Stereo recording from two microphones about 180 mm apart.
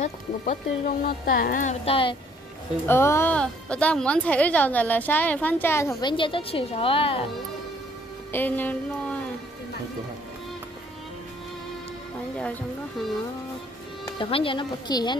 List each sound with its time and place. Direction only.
0.0 s speech: 50° left (ahead or behind)
1.9 s speech: 30° left (ahead or behind)
2.9 s speech: 15° left (ahead or behind); by 7.2 s 30° left (ahead or behind)
8.3 s music: 10° left (ahead or behind)
14.0 s speech: 25° left (ahead or behind)